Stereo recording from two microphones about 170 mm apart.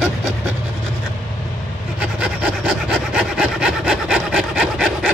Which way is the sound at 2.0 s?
5° right (ahead or behind).